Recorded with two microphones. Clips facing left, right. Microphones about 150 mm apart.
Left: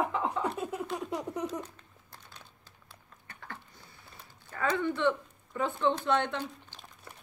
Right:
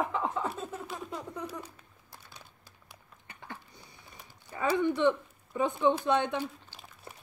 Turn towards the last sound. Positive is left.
turn(degrees=-15)  # may be behind; listen again after turning